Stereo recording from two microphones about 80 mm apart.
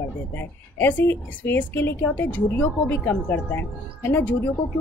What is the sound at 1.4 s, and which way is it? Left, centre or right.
A woman's voice, left.